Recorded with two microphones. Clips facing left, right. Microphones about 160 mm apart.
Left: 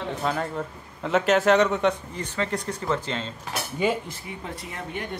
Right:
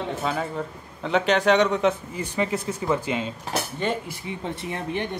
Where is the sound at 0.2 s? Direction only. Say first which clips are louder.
Even; centre (ahead or behind).